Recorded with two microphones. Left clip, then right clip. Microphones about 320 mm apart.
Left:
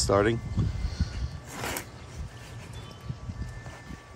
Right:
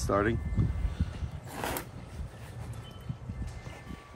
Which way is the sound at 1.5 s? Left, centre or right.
Centre.